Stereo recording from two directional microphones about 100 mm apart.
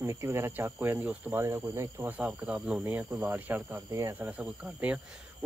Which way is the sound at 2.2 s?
5° right (ahead or behind).